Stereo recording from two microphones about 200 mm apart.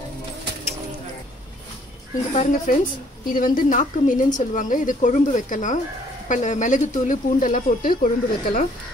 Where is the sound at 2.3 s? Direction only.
40° left (ahead or behind).